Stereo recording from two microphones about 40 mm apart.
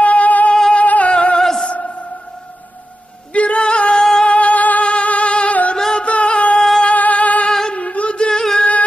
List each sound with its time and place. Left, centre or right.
0.0 s music: left
1.1 s music: left
1.6 s a sound: left
3.3 s music: left
8.3 s singing: centre